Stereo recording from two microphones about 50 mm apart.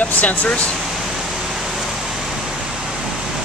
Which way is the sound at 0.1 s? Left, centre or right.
Left.